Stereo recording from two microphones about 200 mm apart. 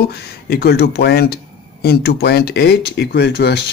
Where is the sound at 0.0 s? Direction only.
50° left (ahead or behind).